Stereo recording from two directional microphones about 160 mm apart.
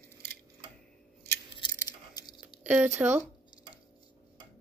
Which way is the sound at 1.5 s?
25° left (ahead or behind).